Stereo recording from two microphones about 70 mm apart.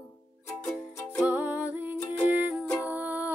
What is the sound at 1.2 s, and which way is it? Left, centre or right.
Music, right.